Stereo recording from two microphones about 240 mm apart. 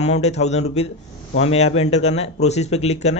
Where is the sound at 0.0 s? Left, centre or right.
Left.